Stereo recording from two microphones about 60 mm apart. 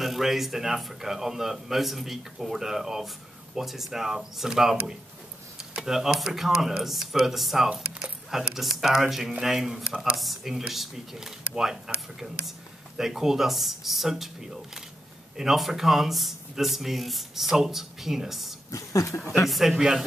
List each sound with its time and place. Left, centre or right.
0.0 s speech: centre
18.7 s a sound: left
19.8 s speech: centre